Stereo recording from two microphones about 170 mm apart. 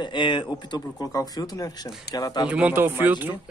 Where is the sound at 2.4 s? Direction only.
10° right (ahead or behind).